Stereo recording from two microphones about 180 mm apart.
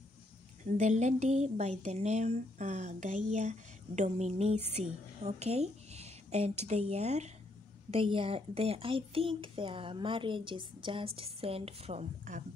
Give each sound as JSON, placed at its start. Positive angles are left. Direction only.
{"t": 0.7, "sound": "a woman's voice", "side_deg": -40}